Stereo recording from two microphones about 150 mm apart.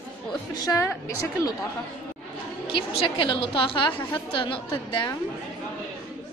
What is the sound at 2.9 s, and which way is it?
A woman's voice, 35° left (ahead or behind).